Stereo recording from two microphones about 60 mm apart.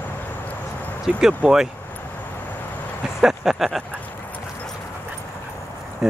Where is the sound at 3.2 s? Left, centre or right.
Centre.